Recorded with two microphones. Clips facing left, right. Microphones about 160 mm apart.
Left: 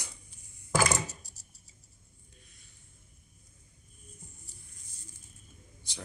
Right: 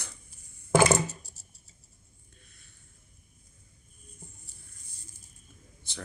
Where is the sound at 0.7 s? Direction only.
25° right (ahead or behind).